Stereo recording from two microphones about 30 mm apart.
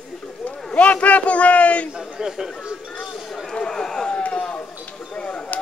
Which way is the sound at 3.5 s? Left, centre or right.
Left.